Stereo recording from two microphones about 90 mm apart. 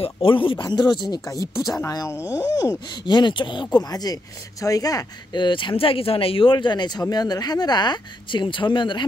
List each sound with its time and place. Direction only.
0.0 s speech: 80° left
0.7 s speech: 50° left (ahead or behind)
1.5 s speech: centre (ahead or behind)
1.9 s speech: 35° left (ahead or behind)
3.1 s speech: 55° left (ahead or behind)
5.4 s speech: 65° left (ahead or behind)